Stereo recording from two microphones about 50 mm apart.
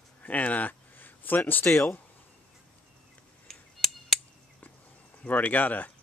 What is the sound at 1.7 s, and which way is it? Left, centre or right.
Speech, left.